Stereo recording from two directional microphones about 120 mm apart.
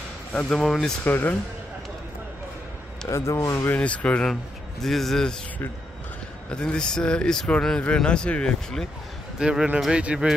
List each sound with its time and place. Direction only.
0.3 s speech: 10° left (ahead or behind)
1.0 s speech: 15° left (ahead or behind)
3.1 s speech: 25° left (ahead or behind)
3.7 s speech: 10° left (ahead or behind)
6.5 s speech: 5° left (ahead or behind)
9.4 s speech: 5° right (ahead or behind)